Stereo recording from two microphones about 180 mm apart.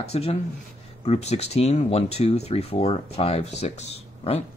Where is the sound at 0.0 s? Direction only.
35° left (ahead or behind).